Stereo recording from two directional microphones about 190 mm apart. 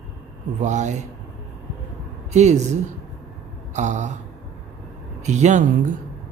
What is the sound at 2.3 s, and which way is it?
Speech, 35° right (ahead or behind).